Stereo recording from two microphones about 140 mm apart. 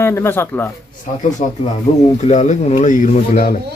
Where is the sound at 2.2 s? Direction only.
55° left (ahead or behind); by 3.5 s 75° left (ahead or behind).